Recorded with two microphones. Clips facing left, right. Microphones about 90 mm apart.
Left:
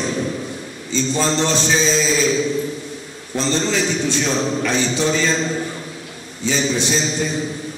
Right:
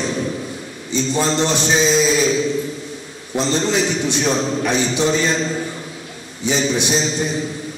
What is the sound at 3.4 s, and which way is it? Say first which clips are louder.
A man's voice: right 1 dB; 15° right (ahead or behind).